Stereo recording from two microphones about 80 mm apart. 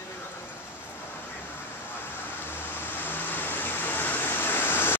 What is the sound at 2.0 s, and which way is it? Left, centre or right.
Vehicle, left.